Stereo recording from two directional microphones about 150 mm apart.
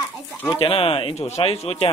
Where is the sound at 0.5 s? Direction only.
35° left (ahead or behind).